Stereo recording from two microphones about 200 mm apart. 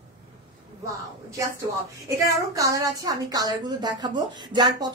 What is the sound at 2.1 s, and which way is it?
A woman's voice, 15° right (ahead or behind).